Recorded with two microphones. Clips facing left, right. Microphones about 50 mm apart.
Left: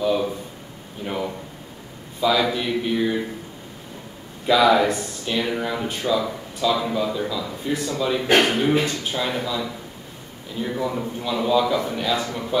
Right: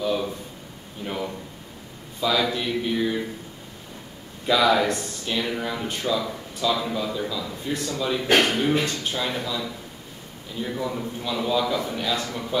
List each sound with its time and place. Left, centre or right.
0.0 s a man's voice: centre
4.5 s speech: centre